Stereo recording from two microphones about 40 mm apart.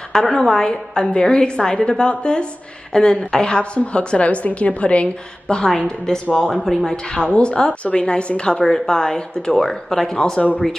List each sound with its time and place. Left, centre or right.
0.1 s a woman's voice: centre; by 5.1 s left
5.8 s a woman's voice: left
6.3 s a woman's voice: centre
7.3 s a woman's voice: left
9.7 s a woman's voice: centre
10.0 s a woman's voice: centre